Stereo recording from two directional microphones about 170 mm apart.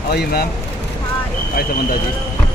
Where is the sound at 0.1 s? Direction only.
70° left (ahead or behind).